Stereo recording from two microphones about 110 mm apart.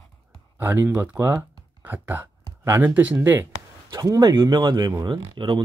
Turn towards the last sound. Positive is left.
turn(degrees=-35)  # may be behind; listen again after turning